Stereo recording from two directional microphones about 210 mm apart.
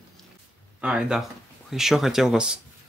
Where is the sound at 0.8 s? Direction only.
5° right (ahead or behind).